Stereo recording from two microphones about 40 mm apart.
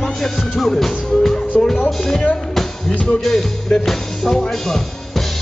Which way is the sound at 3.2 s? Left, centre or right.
Centre.